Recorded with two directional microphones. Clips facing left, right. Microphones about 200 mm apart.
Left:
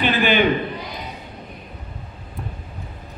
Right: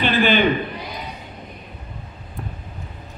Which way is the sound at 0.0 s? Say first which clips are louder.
Right 1 dB; 15° left (ahead or behind).